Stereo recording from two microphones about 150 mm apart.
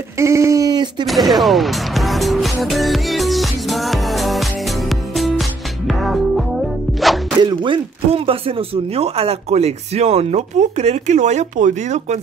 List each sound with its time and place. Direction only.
0.2 s a sound: 20° right (ahead or behind)
1.0 s music: centre (ahead or behind)
7.4 s speech: 35° right (ahead or behind); by 12.2 s 55° right (ahead or behind)